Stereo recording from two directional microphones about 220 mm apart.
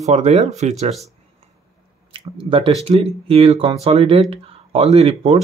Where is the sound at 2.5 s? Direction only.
25° right (ahead or behind).